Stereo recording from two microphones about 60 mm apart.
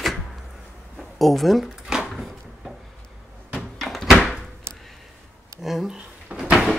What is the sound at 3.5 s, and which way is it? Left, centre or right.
Door, centre.